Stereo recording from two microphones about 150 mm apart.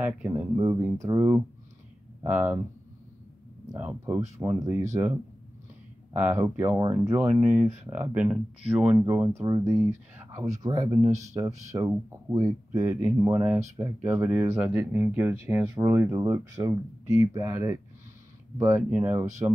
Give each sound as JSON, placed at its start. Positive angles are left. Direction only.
{"t": 0.3, "sound": "speech", "side_deg": -25}
{"t": 3.7, "sound": "speech", "side_deg": -10}
{"t": 6.1, "sound": "speech", "side_deg": -15}
{"t": 18.8, "sound": "speech", "side_deg": -10}
{"t": 19.4, "sound": "speech", "side_deg": -20}